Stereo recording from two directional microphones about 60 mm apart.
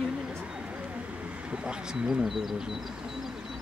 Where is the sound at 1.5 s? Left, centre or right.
Centre.